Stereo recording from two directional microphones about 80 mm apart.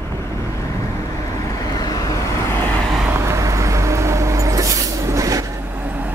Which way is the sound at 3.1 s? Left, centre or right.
Right.